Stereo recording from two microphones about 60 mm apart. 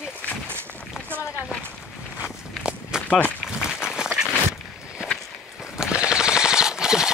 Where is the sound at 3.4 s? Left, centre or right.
Centre.